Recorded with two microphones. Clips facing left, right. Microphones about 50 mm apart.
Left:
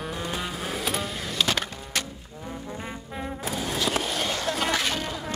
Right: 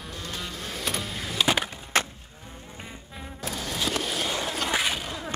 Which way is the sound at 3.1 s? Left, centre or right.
Left.